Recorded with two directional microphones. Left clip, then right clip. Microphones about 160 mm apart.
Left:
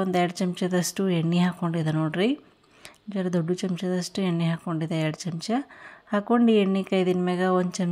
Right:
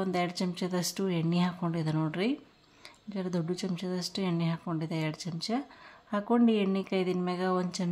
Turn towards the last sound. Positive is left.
turn(degrees=25)  # may be behind; listen again after turning